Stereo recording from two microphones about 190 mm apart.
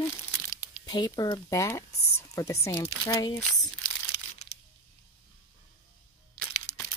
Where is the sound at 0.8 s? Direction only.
20° left (ahead or behind).